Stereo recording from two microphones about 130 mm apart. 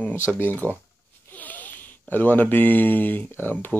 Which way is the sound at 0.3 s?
15° left (ahead or behind).